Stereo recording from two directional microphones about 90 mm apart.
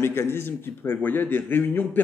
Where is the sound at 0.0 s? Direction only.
25° left (ahead or behind).